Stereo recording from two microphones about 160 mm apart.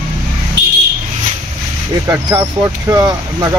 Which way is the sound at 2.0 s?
25° right (ahead or behind).